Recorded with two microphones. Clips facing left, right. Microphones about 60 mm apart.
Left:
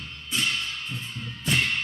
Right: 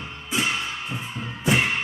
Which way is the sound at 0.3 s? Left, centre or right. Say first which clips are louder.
Right 3 dB; centre.